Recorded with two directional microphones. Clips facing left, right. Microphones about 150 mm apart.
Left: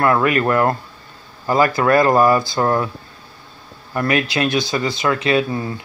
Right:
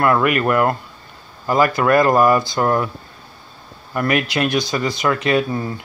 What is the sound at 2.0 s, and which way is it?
Speech, 30° left (ahead or behind).